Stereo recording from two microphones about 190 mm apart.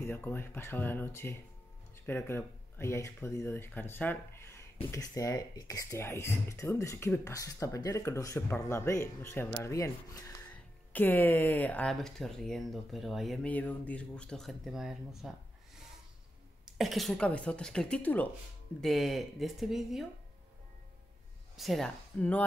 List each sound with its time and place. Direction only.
0.0 s speech: 10° left (ahead or behind)
16.6 s speech: centre (ahead or behind)
21.5 s speech: centre (ahead or behind)